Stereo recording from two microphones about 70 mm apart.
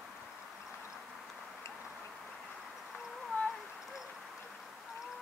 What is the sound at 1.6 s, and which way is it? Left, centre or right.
Tick-tock, left.